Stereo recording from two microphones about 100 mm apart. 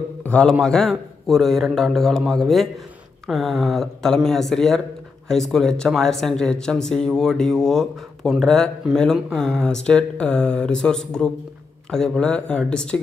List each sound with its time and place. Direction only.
0.2 s speech: 10° left (ahead or behind)